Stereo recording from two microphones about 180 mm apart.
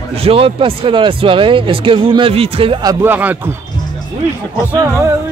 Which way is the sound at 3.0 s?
10° right (ahead or behind).